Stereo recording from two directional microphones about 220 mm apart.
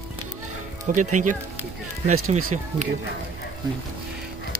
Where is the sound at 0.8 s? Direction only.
35° right (ahead or behind).